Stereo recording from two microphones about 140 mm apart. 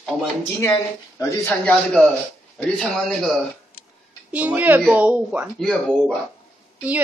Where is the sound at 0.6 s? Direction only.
20° left (ahead or behind).